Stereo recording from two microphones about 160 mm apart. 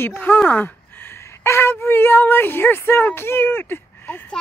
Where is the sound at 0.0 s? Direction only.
10° left (ahead or behind).